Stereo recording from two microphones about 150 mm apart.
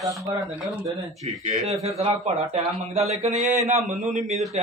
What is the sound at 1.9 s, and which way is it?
Speech, 45° right (ahead or behind).